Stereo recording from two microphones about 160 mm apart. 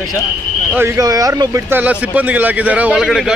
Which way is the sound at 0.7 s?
15° right (ahead or behind).